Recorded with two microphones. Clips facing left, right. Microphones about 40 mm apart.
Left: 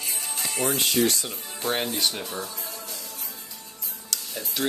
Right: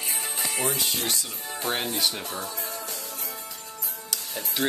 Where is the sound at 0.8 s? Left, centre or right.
Left.